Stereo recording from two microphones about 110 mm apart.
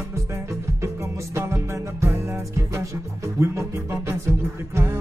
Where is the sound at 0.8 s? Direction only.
25° right (ahead or behind).